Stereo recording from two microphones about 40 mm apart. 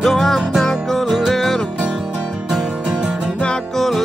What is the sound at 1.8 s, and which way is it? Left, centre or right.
Music, right.